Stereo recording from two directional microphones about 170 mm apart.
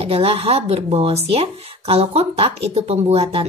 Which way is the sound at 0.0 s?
35° right (ahead or behind).